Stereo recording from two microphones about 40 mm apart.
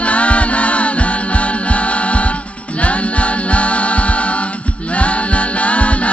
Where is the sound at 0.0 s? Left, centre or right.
Left.